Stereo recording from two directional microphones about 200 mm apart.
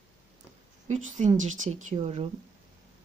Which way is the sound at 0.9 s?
35° right (ahead or behind).